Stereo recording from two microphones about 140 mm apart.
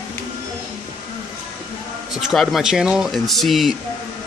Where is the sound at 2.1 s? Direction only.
Centre (ahead or behind).